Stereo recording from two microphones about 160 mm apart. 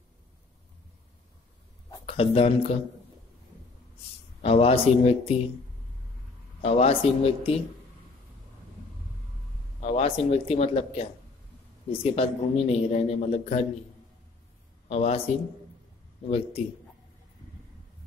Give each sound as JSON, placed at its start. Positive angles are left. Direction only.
{"t": 2.0, "sound": "speech", "side_deg": 40}
{"t": 4.4, "sound": "a man's voice", "side_deg": 40}
{"t": 6.6, "sound": "a man's voice", "side_deg": 40}
{"t": 9.8, "sound": "a man's voice", "side_deg": 40}
{"t": 14.9, "sound": "a man's voice", "side_deg": 40}